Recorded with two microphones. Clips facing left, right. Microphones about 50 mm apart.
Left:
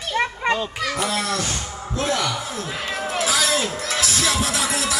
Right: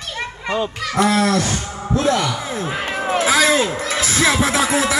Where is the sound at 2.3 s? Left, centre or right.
Right.